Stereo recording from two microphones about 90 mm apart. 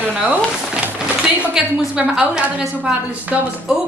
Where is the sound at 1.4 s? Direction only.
15° right (ahead or behind).